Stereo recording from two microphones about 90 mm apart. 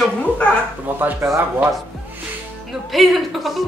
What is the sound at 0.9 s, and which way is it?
Speech, 20° right (ahead or behind).